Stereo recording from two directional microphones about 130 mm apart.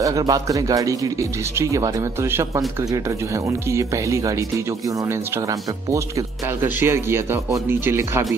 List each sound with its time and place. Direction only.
0.0 s speech: 25° right (ahead or behind)
6.6 s speech: 20° right (ahead or behind)